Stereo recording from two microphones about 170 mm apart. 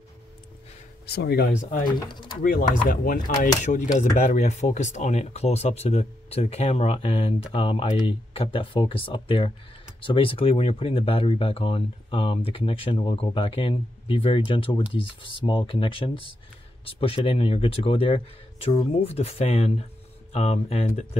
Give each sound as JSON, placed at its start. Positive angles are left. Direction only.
{"t": 1.0, "sound": "speech", "side_deg": 75}
{"t": 2.0, "sound": "speech", "side_deg": 25}
{"t": 2.4, "sound": "speech", "side_deg": 55}
{"t": 3.6, "sound": "chopping", "side_deg": 45}
{"t": 4.0, "sound": "speech", "side_deg": 45}